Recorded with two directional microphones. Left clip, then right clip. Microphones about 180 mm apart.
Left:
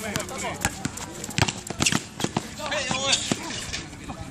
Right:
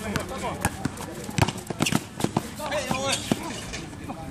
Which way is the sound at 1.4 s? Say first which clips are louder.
Left 1 dB; 5° right (ahead or behind).